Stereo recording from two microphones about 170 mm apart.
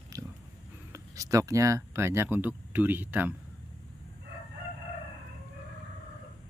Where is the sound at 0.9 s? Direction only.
20° right (ahead or behind).